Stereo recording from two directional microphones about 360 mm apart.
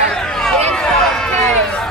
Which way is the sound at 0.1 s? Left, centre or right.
Centre.